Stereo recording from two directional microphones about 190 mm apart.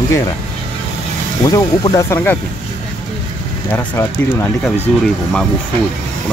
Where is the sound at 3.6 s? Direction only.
10° left (ahead or behind).